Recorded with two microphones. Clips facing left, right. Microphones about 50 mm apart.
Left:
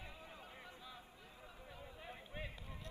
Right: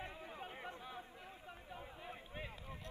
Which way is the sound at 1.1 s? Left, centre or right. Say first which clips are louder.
Right 5 dB; right.